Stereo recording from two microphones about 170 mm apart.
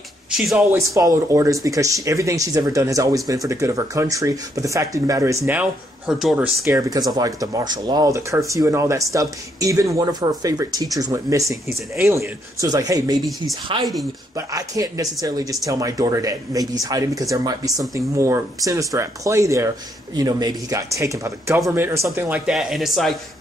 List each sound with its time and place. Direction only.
0.3 s speech: centre (ahead or behind)
0.7 s speech: 15° right (ahead or behind)
6.0 s speech: centre (ahead or behind); by 13.2 s 20° right (ahead or behind)
14.3 s speech: 20° right (ahead or behind)
22.3 s speech: centre (ahead or behind)